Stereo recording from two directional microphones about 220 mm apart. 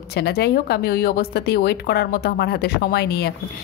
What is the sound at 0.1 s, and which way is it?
Speech, 45° left (ahead or behind).